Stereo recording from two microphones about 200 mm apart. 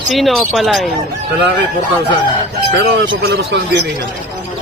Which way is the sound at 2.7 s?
65° right (ahead or behind).